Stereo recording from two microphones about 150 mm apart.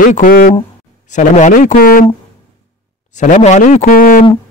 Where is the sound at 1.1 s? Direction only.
55° left (ahead or behind); by 2.0 s 75° left (ahead or behind).